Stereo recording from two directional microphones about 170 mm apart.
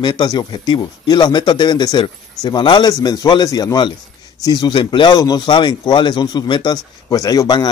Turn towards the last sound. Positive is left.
turn(degrees=25)  # may be behind; listen again after turning